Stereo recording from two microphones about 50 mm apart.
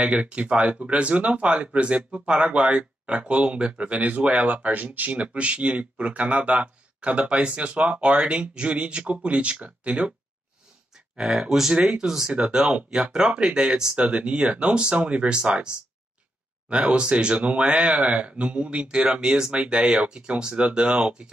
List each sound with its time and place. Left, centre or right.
0.0 s speech: right
11.1 s speech: centre